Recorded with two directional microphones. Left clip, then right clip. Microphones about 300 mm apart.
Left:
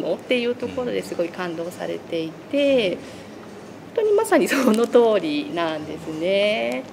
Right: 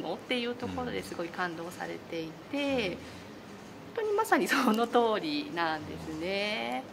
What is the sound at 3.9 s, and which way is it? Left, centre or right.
Speech, centre.